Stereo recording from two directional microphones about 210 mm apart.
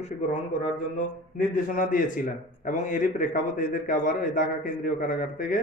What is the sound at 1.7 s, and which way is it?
A man's voice, 40° left (ahead or behind).